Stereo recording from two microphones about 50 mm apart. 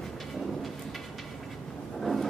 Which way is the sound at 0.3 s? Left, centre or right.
Centre.